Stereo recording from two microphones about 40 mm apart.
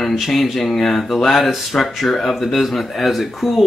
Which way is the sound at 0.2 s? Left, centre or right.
Centre.